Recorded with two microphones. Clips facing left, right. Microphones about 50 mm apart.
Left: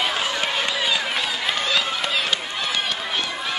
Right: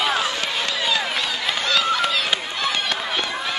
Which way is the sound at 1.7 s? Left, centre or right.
Centre.